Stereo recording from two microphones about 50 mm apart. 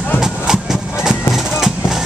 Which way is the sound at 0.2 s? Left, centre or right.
Centre.